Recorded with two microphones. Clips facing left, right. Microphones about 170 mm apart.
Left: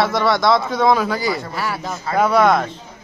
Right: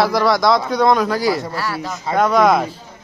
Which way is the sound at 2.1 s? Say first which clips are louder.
Right 1 dB; 5° left (ahead or behind).